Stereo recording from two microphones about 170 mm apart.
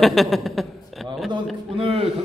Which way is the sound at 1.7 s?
35° right (ahead or behind).